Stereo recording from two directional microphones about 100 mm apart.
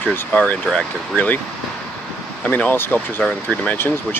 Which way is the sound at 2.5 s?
20° left (ahead or behind).